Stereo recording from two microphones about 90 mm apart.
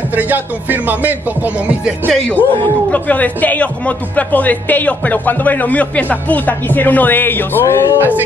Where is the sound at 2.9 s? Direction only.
15° left (ahead or behind).